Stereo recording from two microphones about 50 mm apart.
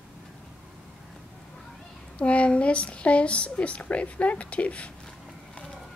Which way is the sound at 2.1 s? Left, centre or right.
Left.